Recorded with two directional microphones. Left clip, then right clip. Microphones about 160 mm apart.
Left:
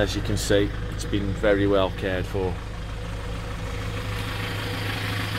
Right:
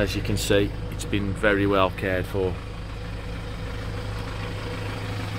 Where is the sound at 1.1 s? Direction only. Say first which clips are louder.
Even; 30° right (ahead or behind).